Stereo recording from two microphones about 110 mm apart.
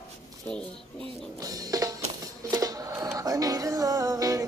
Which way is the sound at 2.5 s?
35° right (ahead or behind).